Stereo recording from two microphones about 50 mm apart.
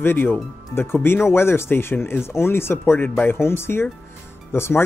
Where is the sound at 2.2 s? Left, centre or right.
Left.